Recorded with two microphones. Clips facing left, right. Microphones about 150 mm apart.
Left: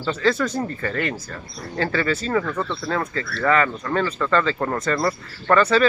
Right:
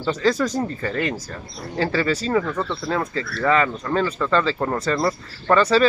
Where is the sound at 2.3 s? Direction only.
15° right (ahead or behind).